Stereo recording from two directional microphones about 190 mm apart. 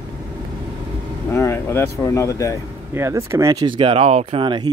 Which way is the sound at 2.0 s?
15° left (ahead or behind).